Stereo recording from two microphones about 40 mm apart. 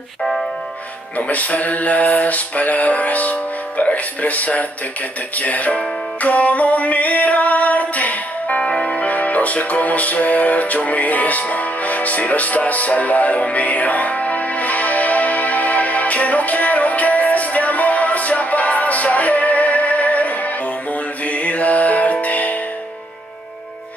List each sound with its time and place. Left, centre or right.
0.2 s music: centre
1.1 s music: left
8.5 s music: left
8.9 s music: left